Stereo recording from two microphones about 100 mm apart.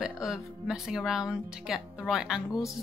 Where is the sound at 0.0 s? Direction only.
5° right (ahead or behind).